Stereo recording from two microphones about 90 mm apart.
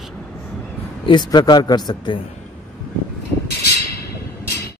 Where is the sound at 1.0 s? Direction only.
55° left (ahead or behind).